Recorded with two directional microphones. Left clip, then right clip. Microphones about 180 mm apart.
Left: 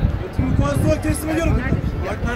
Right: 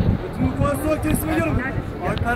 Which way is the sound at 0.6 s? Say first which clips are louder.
Left 1 dB; 5° left (ahead or behind).